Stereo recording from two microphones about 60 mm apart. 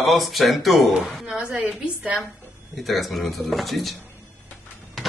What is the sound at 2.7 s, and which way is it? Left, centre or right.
A man's voice, centre.